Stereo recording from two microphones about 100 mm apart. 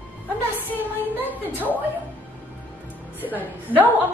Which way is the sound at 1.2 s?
15° right (ahead or behind).